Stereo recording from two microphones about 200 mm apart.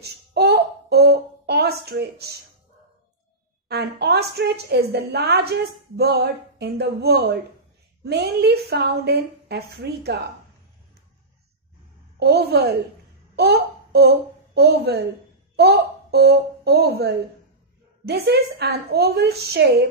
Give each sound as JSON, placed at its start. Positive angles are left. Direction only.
{"t": 0.0, "sound": "a sound", "side_deg": -55}
{"t": 3.6, "sound": "a woman's voice", "side_deg": -55}
{"t": 12.2, "sound": "a woman's voice", "side_deg": -55}